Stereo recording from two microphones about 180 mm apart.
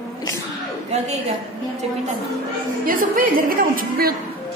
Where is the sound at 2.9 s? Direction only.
50° right (ahead or behind).